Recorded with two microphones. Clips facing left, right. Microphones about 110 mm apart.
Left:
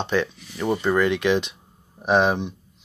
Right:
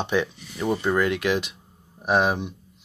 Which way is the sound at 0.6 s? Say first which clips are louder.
Left 2 dB; centre (ahead or behind).